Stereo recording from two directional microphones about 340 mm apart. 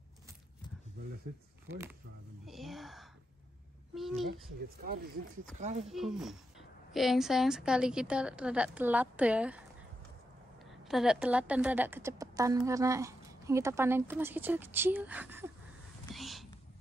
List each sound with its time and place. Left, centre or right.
1.7 s a woman's voice: centre
4.3 s speech: right
5.9 s a woman's voice: centre
10.7 s a woman's voice: centre
16.1 s whispering: centre